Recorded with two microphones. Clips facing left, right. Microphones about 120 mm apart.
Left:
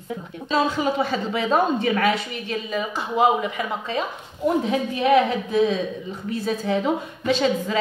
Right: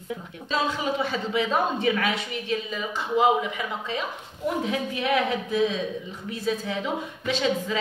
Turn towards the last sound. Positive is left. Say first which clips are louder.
# left 4 dB
turn(degrees=45)  # may be behind; listen again after turning